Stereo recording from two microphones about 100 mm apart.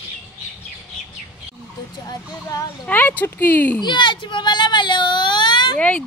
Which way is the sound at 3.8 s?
50° left (ahead or behind).